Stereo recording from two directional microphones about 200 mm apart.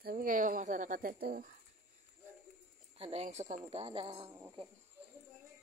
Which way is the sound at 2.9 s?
30° right (ahead or behind).